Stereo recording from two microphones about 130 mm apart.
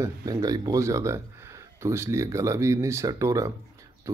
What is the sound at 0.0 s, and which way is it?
Speech, 25° right (ahead or behind).